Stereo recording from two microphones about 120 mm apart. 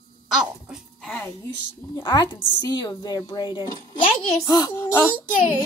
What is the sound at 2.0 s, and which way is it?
A woman's voice, 45° left (ahead or behind).